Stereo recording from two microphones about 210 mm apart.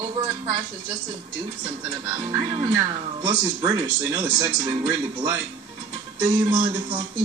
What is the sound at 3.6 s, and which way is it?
A woman's voice, 10° right (ahead or behind).